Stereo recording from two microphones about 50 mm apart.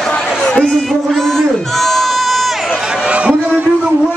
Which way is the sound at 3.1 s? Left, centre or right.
Right.